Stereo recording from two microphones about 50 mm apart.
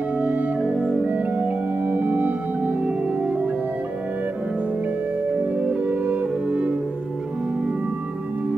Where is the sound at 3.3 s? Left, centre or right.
Right.